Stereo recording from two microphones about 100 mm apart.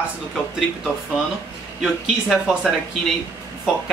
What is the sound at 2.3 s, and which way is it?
Speech, 5° right (ahead or behind).